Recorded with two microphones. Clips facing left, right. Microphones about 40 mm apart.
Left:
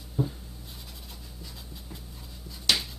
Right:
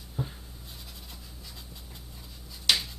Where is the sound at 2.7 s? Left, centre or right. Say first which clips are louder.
Even; centre.